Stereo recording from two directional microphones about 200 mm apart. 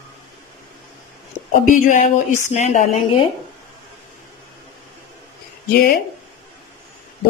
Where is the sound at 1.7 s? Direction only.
40° left (ahead or behind).